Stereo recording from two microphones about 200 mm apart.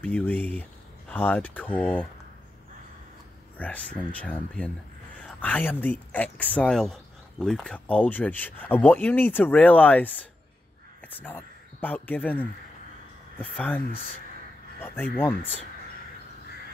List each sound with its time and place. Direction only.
0.0 s speech: 10° left (ahead or behind)
3.5 s speech: 5° left (ahead or behind)
11.2 s speech: 10° left (ahead or behind)